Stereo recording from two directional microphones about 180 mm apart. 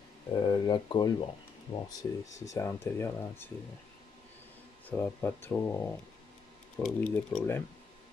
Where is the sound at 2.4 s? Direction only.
15° left (ahead or behind).